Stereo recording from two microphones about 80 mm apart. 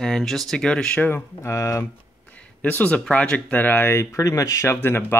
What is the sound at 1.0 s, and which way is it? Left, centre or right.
Speech, left.